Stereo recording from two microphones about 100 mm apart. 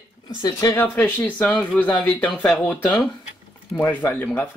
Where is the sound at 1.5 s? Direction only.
5° left (ahead or behind).